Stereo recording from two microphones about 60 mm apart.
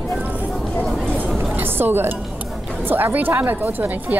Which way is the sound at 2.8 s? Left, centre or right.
Right.